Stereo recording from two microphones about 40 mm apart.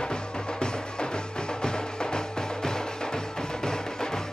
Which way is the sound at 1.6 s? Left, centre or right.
Centre.